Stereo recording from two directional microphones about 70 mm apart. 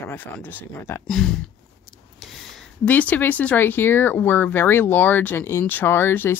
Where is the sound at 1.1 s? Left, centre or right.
Centre.